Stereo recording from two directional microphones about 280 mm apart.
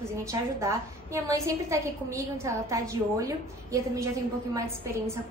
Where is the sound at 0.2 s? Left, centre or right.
Centre.